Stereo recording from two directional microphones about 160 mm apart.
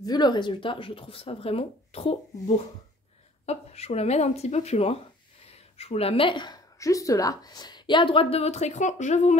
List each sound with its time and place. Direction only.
0.0 s a woman's voice: 25° left (ahead or behind); by 9.4 s 45° left (ahead or behind)